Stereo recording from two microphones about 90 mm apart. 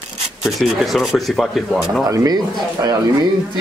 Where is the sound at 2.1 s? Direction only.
45° right (ahead or behind).